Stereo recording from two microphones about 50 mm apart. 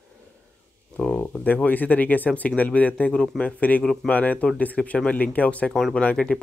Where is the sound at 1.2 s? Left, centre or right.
Left.